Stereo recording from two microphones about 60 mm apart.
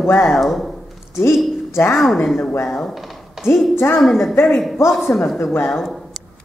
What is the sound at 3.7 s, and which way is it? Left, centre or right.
Speech, left.